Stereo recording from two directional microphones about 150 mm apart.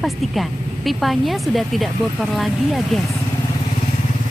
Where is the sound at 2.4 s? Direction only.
Centre (ahead or behind).